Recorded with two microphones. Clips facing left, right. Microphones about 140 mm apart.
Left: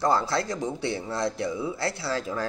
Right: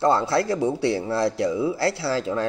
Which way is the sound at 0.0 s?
25° right (ahead or behind).